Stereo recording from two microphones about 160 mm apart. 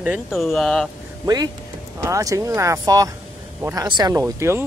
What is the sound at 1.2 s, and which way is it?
A man's voice, 25° right (ahead or behind).